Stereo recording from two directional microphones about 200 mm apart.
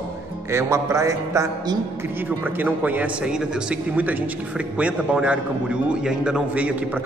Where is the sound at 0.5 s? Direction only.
15° right (ahead or behind).